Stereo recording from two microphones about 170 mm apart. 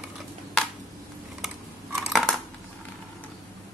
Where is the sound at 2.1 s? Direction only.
Centre (ahead or behind).